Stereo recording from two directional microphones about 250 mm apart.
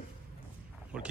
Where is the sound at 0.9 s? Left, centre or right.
Centre.